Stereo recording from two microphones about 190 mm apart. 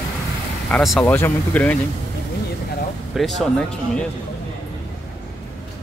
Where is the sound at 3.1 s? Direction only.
Centre (ahead or behind).